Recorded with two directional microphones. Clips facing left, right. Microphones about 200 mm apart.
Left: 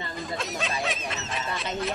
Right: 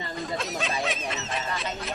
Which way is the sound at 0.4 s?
Centre (ahead or behind).